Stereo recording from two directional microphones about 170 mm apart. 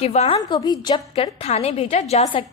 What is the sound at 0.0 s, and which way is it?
Speech, 40° left (ahead or behind).